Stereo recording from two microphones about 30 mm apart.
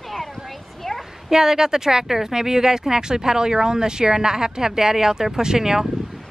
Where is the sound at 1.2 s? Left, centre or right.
Centre.